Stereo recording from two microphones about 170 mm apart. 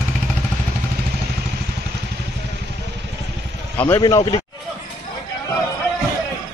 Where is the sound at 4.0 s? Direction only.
25° left (ahead or behind).